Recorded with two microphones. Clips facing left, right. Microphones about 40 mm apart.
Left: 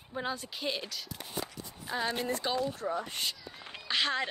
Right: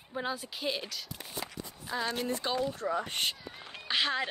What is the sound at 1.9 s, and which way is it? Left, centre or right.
Speech, centre.